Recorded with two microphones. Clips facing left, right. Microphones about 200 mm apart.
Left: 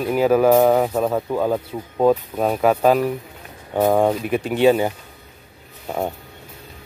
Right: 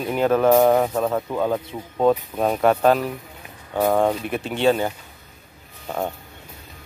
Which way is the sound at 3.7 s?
20° left (ahead or behind).